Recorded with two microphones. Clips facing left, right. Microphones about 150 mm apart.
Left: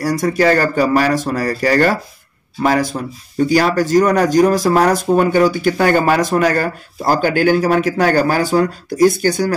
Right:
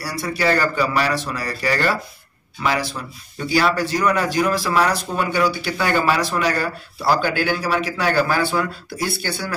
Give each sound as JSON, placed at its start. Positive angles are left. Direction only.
{"t": 0.0, "sound": "speech", "side_deg": 45}